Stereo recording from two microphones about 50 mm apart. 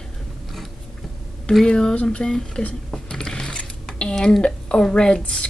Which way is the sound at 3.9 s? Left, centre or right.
Centre.